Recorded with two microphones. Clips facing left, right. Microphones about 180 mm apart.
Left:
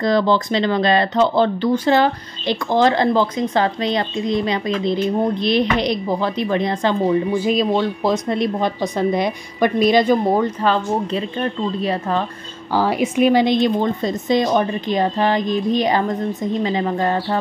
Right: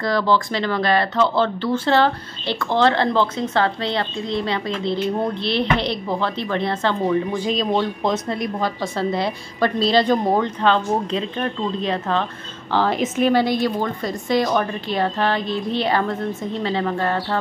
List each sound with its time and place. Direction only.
0.0 s speech: 20° left (ahead or behind)
8.3 s speech: 20° left (ahead or behind)